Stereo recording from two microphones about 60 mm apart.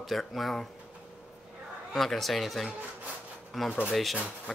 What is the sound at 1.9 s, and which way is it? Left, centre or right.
Speech, centre.